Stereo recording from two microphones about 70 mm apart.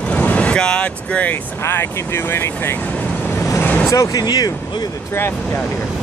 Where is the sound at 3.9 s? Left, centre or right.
Left.